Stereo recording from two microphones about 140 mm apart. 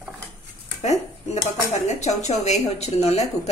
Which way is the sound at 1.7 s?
55° left (ahead or behind).